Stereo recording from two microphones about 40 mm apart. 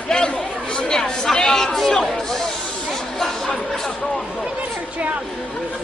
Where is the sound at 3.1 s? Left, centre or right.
Centre.